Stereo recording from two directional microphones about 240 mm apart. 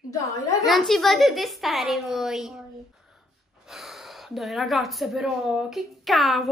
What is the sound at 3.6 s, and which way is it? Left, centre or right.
Speech, centre.